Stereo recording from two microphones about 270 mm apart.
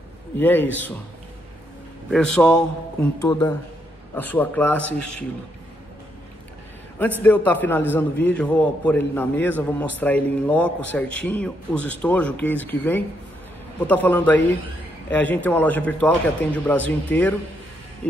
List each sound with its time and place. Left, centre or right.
0.4 s a man's voice: centre
2.0 s a man's voice: centre
3.3 s a man's voice: centre
4.1 s a man's voice: centre
7.2 s a man's voice: centre